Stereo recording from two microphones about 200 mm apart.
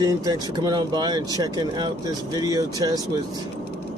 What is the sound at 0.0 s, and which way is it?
Speech, 20° right (ahead or behind).